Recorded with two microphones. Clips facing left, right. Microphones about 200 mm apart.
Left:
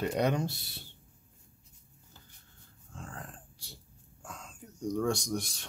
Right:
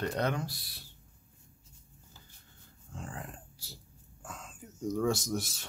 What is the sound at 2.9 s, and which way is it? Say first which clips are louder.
Dog: right 2 dB; 15° right (ahead or behind).